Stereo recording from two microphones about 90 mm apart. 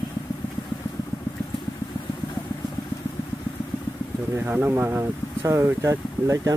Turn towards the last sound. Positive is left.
turn(degrees=-35)  # may be behind; listen again after turning